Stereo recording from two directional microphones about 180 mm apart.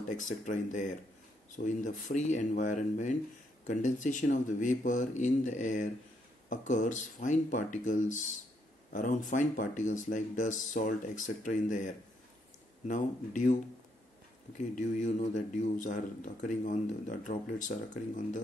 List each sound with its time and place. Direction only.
0.2 s speech: 45° left (ahead or behind)
14.8 s speech: 45° left (ahead or behind)